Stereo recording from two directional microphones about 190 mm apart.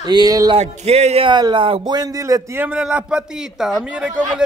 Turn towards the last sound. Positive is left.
turn(degrees=-5)  # may be behind; listen again after turning